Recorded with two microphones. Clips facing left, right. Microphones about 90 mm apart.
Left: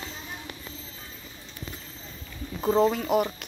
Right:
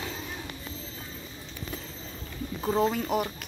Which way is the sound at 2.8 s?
Centre (ahead or behind).